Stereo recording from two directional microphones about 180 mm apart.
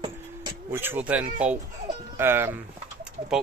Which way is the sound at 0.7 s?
10° right (ahead or behind).